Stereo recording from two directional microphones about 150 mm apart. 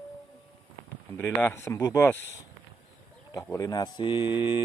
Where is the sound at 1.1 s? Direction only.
15° left (ahead or behind).